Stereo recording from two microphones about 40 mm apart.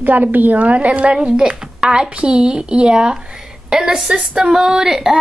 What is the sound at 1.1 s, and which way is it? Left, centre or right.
A woman's voice, centre.